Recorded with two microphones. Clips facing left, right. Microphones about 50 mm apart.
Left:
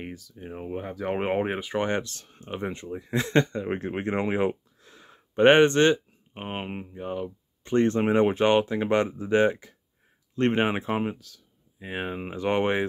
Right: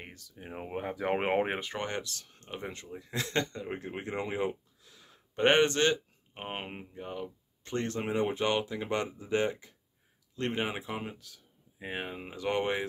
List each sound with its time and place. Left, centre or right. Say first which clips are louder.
0.0 s speech: left 10 dB; centre
0.3 s speech: left 2 dB; centre
1.8 s speech: left 9 dB; left
3.6 s speech: left 9 dB; left
4.8 s a sound: left 8 dB; left
6.3 s speech: left 5 dB; centre
7.7 s speech: left 11 dB; left
8.1 s speech: left 6 dB; left
10.3 s speech: left 9 dB; left
11.3 s speech: left 1 dB; centre
12.0 s speech: left 9 dB; left